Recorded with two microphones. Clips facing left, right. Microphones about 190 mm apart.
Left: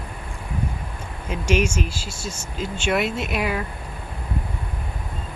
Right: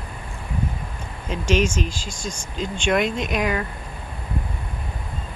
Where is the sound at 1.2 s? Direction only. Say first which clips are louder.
Right 1 dB; 10° left (ahead or behind).